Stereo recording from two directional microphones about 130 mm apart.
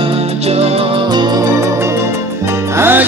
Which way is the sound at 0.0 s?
50° right (ahead or behind).